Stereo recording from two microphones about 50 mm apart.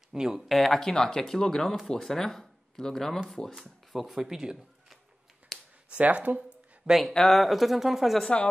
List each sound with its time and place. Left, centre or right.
0.1 s speech: centre
0.6 s speech: centre
5.5 s a sound: centre
5.9 s speech: right
6.9 s speech: centre